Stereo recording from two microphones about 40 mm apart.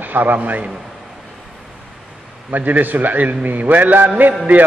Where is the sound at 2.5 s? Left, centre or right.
Right.